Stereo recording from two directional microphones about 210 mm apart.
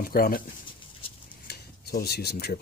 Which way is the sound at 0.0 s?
45° left (ahead or behind).